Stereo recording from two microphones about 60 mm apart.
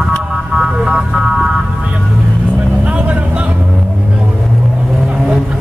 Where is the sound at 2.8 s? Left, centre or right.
Right.